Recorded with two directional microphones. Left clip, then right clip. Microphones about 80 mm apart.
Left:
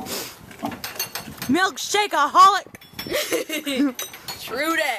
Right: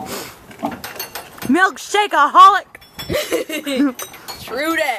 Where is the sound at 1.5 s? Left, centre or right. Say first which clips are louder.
Right 6 dB; centre.